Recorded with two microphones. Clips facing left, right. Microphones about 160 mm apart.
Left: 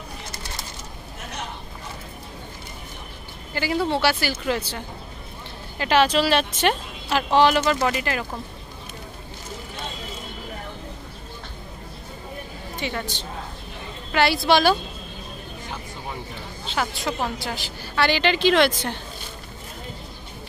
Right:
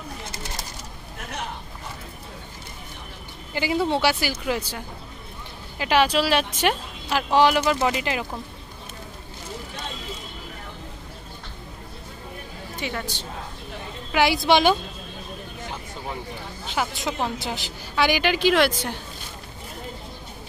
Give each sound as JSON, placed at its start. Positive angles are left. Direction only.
{"t": 3.5, "sound": "a woman's voice", "side_deg": -15}
{"t": 12.8, "sound": "a woman's voice", "side_deg": -5}
{"t": 16.6, "sound": "a woman's voice", "side_deg": -15}